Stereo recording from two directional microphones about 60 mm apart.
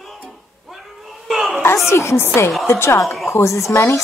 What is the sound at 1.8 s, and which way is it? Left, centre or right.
A woman's voice, left.